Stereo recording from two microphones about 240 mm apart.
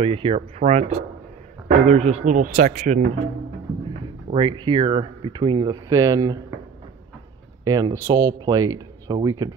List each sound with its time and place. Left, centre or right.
0.0 s speech: right
4.3 s speech: centre
7.6 s speech: centre